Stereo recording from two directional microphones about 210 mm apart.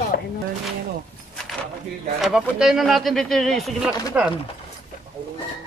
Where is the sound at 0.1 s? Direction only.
45° left (ahead or behind).